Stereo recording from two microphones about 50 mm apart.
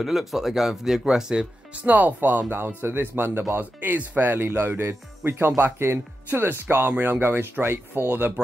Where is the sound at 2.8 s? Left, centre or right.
Right.